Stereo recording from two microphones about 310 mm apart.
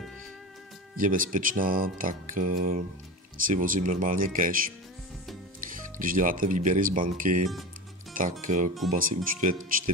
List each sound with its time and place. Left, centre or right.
0.9 s speech: right
5.7 s speech: right